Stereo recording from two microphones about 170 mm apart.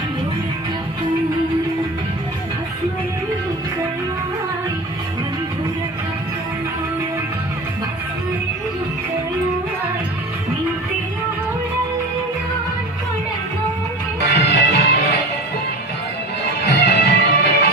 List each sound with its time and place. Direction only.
14.3 s music: 85° left
16.6 s music: 90° left